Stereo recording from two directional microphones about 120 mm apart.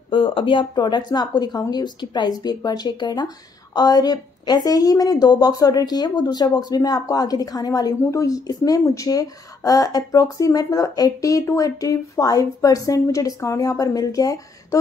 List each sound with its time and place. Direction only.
0.1 s a woman's voice: 45° left (ahead or behind); by 14.8 s 30° left (ahead or behind)